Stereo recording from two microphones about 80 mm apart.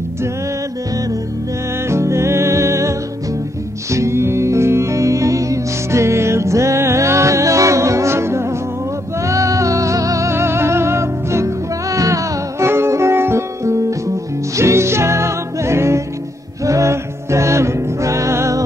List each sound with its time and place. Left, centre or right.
1.9 s music: right